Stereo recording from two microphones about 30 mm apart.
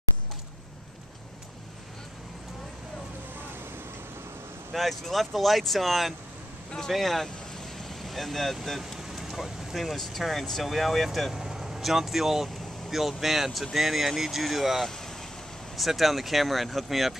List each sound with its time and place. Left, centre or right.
4.7 s speech: centre
7.9 s vehicle: centre
8.6 s speech: centre
9.1 s vehicle: centre
10.0 s speech: centre
11.3 s vehicle: centre
11.8 s speech: centre